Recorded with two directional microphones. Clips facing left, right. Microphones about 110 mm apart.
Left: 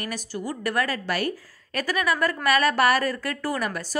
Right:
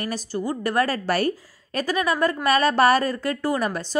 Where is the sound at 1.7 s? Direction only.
25° right (ahead or behind).